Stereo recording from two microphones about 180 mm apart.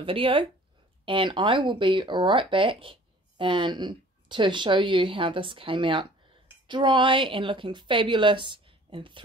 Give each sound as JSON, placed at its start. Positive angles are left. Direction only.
{"t": 0.0, "sound": "speech", "side_deg": -30}